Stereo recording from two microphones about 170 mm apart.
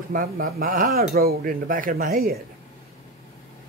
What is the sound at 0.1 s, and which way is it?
Speech, 60° right (ahead or behind).